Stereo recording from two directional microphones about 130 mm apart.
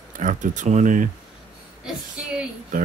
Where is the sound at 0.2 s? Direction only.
75° right (ahead or behind).